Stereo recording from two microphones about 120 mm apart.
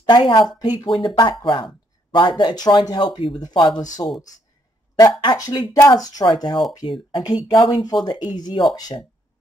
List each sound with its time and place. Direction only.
0.0 s speech: 40° left (ahead or behind)
5.2 s speech: 35° left (ahead or behind)